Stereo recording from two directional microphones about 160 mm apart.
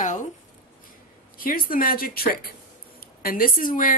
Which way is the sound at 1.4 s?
65° left (ahead or behind).